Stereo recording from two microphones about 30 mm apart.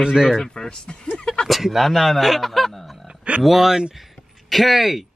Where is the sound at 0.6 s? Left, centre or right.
Left.